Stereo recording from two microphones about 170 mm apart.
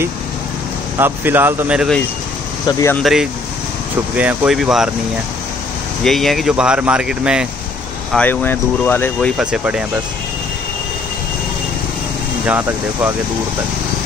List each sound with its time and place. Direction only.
0.9 s speech: 10° right (ahead or behind)
2.6 s speech: 15° left (ahead or behind)
3.0 s speech: centre (ahead or behind)
6.0 s speech: centre (ahead or behind)
8.1 s speech: 10° left (ahead or behind)
9.4 s speech: 5° right (ahead or behind)
12.4 s speech: 10° right (ahead or behind)